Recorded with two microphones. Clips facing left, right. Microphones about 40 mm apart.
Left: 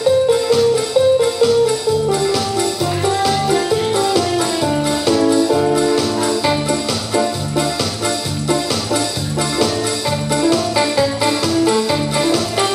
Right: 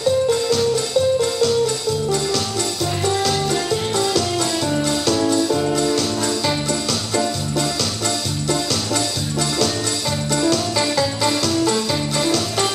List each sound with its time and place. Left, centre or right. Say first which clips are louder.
0.3 s music: left 5 dB; centre
10.3 s music: left 4 dB; centre